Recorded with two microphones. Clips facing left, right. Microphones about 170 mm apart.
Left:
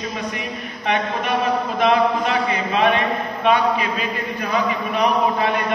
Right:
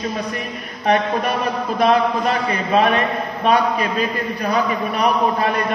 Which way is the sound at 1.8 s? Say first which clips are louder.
Right 2 dB; 40° right (ahead or behind).